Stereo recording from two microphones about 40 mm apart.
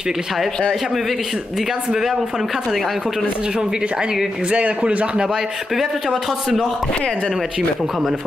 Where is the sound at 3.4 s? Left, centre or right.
Centre.